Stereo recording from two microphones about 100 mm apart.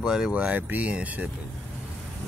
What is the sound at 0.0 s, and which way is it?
Speech, 5° right (ahead or behind).